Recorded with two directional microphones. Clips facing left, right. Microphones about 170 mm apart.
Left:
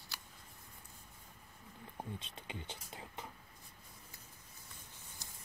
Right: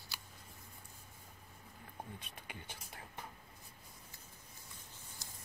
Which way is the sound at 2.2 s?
25° left (ahead or behind).